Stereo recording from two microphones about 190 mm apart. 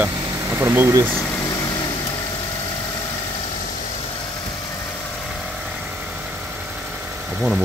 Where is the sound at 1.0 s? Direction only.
5° left (ahead or behind).